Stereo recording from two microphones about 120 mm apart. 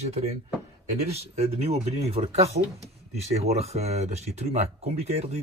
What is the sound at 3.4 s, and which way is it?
Speech, 60° right (ahead or behind).